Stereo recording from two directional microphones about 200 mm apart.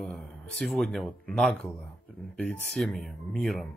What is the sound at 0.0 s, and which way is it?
Speech, centre (ahead or behind).